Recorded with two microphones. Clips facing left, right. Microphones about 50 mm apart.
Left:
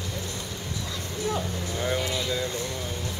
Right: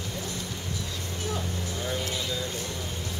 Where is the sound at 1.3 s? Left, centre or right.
Left.